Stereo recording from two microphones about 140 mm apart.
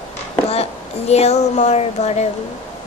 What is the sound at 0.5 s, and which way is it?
Speech, 45° left (ahead or behind).